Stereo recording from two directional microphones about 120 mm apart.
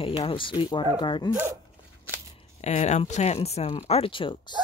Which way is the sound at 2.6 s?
70° left (ahead or behind).